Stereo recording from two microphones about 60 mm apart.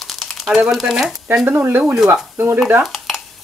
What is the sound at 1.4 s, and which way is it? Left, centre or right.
Speech, right.